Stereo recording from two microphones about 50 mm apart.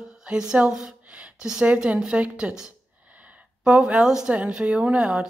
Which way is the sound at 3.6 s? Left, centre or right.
Right.